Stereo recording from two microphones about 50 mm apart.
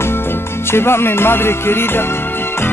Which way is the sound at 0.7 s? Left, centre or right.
Left.